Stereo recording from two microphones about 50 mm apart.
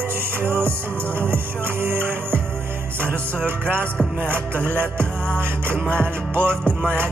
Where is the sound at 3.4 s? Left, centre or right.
Right.